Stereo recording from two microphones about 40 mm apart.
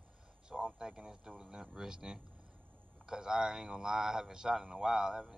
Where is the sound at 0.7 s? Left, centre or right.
Centre.